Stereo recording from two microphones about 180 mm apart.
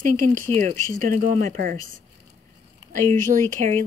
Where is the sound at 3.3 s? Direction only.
45° right (ahead or behind).